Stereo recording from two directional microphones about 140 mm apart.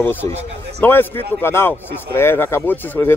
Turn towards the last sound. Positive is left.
turn(degrees=15)  # may be behind; listen again after turning